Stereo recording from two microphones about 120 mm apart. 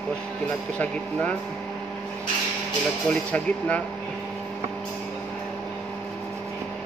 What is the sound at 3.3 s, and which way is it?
Speech, 10° left (ahead or behind).